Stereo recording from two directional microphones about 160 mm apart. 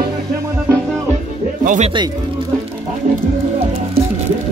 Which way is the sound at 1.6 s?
50° right (ahead or behind).